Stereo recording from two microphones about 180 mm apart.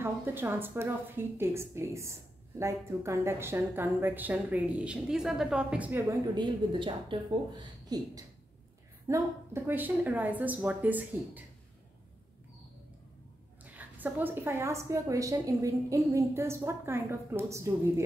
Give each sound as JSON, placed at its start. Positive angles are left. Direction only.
{"t": 0.0, "sound": "a woman's voice", "side_deg": -10}
{"t": 6.3, "sound": "a woman's voice", "side_deg": -25}
{"t": 13.7, "sound": "a woman's voice", "side_deg": -10}